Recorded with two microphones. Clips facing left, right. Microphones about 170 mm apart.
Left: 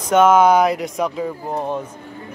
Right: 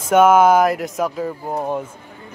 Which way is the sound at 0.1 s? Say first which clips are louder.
Right 1 dB; 10° right (ahead or behind).